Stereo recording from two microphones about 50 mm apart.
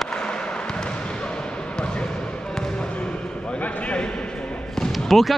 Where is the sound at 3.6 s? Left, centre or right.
Left.